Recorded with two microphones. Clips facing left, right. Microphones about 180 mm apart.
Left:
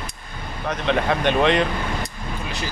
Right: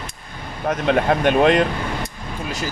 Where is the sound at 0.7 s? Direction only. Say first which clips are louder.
Right 4 dB; 45° right (ahead or behind).